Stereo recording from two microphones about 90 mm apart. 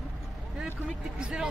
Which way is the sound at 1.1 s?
10° right (ahead or behind).